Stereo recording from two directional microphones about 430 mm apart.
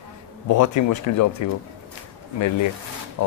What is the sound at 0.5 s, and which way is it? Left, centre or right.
Speech, left.